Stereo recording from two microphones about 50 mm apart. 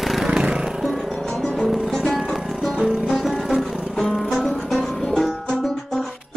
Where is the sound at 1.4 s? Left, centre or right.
Centre.